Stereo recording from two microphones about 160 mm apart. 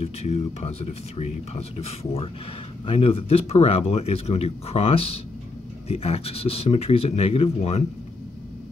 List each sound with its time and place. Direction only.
0.0 s speech: 45° left (ahead or behind)